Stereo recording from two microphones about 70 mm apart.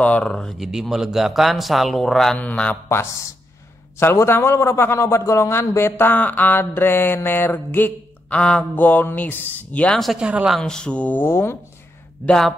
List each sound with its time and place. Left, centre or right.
0.0 s speech: centre
0.6 s speech: centre
2.3 s mantra: centre
2.7 s a man's voice: left
6.1 s mantra: left
8.4 s speech: centre
8.7 s mantra: left
10.1 s speech: centre
10.6 s speech: centre
11.2 s a man's voice: left
12.3 s speech: centre